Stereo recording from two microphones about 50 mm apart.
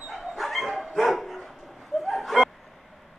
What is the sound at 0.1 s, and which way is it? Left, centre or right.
Dog, centre.